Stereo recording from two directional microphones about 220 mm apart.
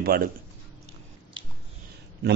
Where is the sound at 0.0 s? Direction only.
45° right (ahead or behind).